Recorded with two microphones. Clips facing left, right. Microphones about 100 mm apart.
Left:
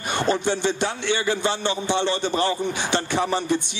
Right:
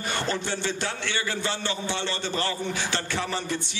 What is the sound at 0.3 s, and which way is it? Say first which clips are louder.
A man's voice: left 11 dB; 20° left (ahead or behind).